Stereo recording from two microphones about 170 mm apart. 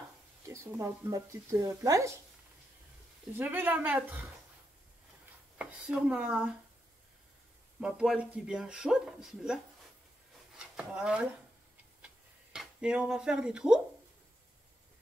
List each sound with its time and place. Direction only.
0.5 s speech: 15° right (ahead or behind)
3.3 s speech: 10° right (ahead or behind)
5.6 s speech: 5° right (ahead or behind)
7.8 s speech: 5° right (ahead or behind)
10.5 s a sound: 5° right (ahead or behind)
12.5 s speech: 5° right (ahead or behind)